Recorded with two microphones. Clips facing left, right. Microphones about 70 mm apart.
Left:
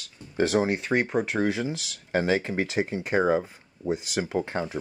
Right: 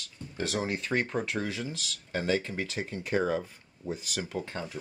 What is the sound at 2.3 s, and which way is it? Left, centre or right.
Speech, left.